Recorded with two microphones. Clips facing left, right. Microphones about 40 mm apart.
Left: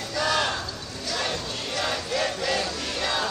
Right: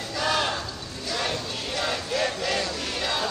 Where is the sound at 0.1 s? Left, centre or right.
Centre.